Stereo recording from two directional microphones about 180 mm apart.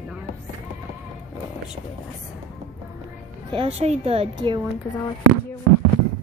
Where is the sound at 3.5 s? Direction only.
30° right (ahead or behind).